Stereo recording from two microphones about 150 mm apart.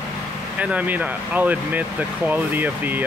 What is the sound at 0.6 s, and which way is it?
Speech, 10° right (ahead or behind).